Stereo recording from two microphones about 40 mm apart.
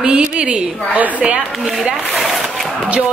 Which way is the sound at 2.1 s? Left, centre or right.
Centre.